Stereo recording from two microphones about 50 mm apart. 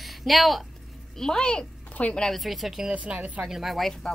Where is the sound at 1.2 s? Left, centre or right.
Centre.